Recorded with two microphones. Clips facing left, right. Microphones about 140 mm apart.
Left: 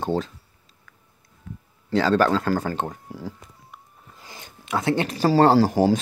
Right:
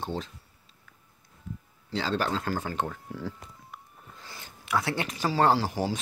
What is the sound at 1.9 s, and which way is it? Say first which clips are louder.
Speech: left 10 dB; 50° left (ahead or behind).